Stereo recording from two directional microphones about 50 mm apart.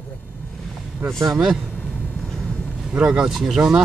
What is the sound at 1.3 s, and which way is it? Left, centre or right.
Speech, centre.